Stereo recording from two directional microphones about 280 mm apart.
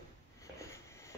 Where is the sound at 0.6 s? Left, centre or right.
Centre.